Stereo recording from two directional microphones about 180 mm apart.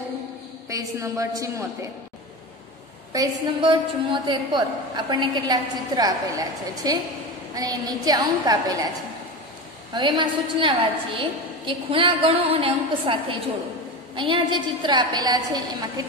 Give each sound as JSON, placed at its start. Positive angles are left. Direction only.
{"t": 0.7, "sound": "a woman's voice", "side_deg": -20}
{"t": 3.1, "sound": "a woman's voice", "side_deg": -25}
{"t": 9.9, "sound": "a woman's voice", "side_deg": -25}